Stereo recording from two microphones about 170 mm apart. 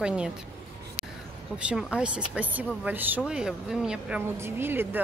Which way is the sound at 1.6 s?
5° right (ahead or behind).